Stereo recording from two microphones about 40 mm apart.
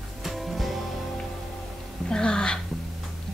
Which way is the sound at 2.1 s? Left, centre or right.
Left.